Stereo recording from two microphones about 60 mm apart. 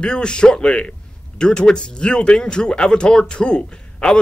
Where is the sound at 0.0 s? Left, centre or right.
Centre.